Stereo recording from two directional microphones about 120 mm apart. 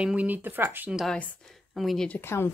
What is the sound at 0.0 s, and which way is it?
Speech, 10° right (ahead or behind).